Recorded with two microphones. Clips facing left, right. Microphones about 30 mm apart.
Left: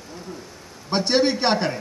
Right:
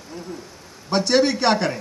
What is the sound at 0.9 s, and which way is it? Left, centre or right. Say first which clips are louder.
Speech: right 2 dB; centre.